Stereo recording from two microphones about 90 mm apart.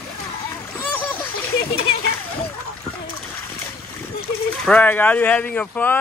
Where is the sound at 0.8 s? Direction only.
20° left (ahead or behind).